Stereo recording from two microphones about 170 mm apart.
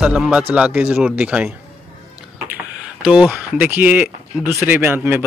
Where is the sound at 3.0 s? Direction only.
5° right (ahead or behind).